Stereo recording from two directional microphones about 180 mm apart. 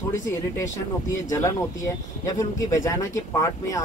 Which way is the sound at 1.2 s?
20° left (ahead or behind).